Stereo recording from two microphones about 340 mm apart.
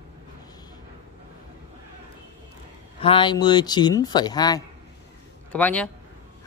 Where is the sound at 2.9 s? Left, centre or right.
Centre.